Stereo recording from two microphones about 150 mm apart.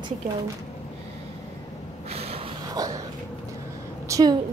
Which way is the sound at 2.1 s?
45° right (ahead or behind).